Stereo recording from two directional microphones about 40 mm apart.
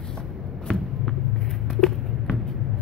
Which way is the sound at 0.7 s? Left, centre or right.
Centre.